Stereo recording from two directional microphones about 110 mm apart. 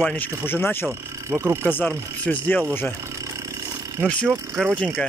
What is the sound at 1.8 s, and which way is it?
Speech, 10° left (ahead or behind).